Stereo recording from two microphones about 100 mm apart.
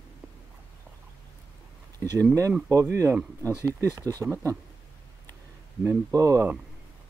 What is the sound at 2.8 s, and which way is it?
Speech, 30° right (ahead or behind).